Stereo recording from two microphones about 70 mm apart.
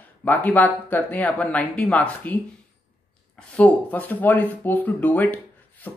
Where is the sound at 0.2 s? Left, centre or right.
Left.